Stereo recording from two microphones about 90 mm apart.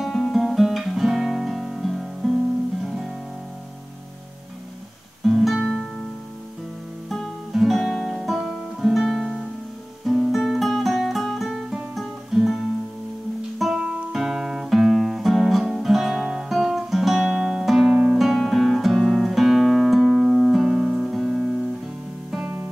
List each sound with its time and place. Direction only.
0.0 s guitar: centre (ahead or behind)
5.2 s guitar: centre (ahead or behind)
7.1 s guitar: centre (ahead or behind)
10.0 s music: 5° right (ahead or behind)
13.6 s guitar: 5° right (ahead or behind)